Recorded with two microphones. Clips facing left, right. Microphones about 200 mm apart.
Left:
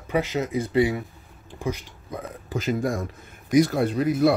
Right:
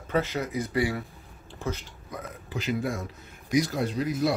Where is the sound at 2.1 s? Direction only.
25° left (ahead or behind).